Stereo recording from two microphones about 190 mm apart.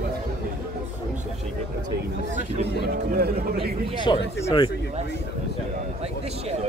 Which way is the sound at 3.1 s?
55° right (ahead or behind).